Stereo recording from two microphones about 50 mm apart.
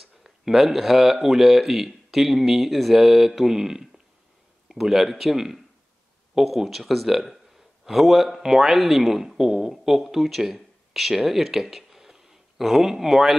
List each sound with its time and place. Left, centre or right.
0.2 s a man's voice: centre